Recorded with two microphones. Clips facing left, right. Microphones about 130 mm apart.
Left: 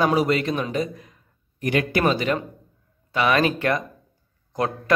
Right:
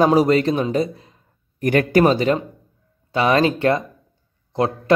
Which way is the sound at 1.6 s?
45° right (ahead or behind).